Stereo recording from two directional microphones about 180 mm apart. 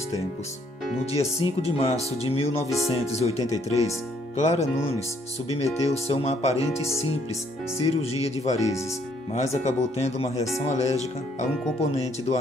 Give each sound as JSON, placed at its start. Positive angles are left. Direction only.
{"t": 1.4, "sound": "speech", "side_deg": 35}